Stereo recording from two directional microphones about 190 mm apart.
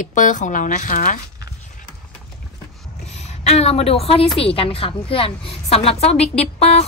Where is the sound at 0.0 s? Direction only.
40° left (ahead or behind).